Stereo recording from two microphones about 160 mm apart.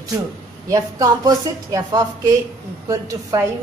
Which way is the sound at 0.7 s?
25° right (ahead or behind).